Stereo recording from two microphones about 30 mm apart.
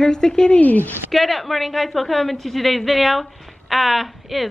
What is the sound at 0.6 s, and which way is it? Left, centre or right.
Speech, left.